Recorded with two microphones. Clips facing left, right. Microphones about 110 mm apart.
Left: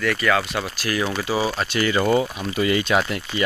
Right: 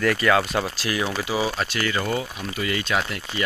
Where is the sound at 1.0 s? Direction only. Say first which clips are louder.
Left 2 dB; 5° right (ahead or behind).